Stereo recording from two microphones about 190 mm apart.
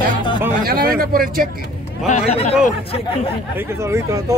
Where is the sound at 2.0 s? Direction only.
35° left (ahead or behind).